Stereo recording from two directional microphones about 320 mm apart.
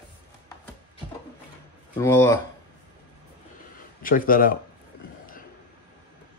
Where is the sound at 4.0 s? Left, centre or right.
Left.